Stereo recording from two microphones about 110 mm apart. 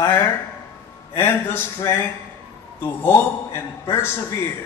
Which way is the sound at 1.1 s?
20° left (ahead or behind).